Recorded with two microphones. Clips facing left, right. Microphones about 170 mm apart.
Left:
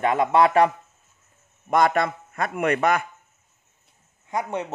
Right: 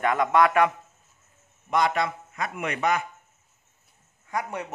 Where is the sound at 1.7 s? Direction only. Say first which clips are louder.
Left 4 dB; 50° left (ahead or behind).